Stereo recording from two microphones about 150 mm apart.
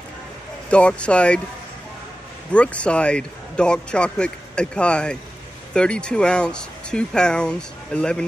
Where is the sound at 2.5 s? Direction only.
10° left (ahead or behind).